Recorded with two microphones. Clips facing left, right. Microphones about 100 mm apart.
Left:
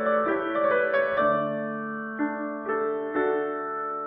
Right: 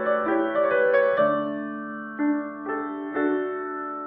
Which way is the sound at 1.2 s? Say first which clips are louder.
Right 2 dB; 15° left (ahead or behind).